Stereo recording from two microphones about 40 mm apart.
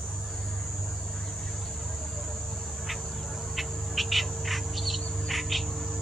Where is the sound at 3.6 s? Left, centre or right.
Centre.